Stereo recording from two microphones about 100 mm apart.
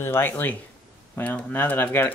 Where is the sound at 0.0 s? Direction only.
25° left (ahead or behind).